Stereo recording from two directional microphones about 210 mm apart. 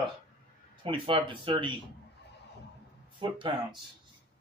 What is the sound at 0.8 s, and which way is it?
Speech, 25° right (ahead or behind).